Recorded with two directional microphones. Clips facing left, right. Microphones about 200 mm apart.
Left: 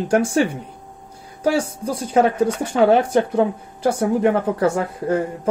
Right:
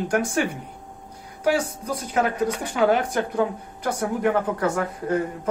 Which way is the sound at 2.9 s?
25° left (ahead or behind).